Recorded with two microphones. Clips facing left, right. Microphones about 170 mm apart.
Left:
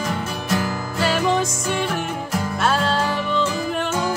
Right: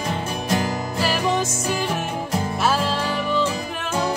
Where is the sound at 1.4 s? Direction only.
Centre (ahead or behind).